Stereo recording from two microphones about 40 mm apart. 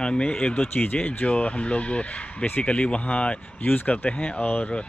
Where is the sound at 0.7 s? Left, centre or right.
Left.